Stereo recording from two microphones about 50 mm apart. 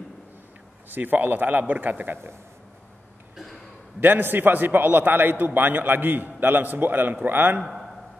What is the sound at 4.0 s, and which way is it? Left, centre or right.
A man's voice, right.